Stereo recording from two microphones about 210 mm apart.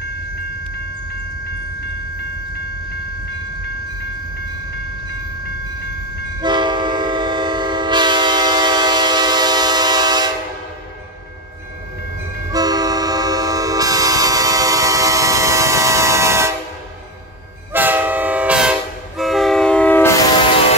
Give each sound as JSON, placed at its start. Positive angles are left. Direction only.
{"t": 6.4, "sound": "train", "side_deg": -20}
{"t": 12.4, "sound": "train", "side_deg": -20}
{"t": 17.7, "sound": "train", "side_deg": -10}